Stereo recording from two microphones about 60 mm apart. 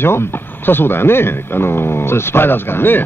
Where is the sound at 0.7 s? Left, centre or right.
Left.